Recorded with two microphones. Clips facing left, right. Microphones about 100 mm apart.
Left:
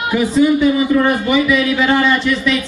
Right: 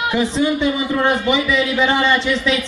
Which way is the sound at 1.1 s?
5° left (ahead or behind).